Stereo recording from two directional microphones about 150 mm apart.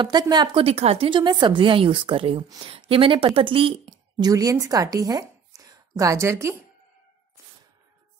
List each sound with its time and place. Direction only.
0.0 s a woman's voice: 25° right (ahead or behind)
2.4 s speech: 25° right (ahead or behind)
2.7 s speech: 35° right (ahead or behind)
4.3 s a woman's voice: 25° right (ahead or behind)